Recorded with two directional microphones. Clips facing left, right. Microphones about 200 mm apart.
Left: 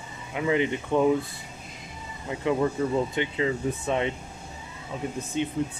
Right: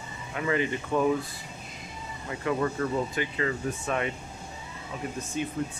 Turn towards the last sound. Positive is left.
turn(degrees=25)  # may be behind; listen again after turning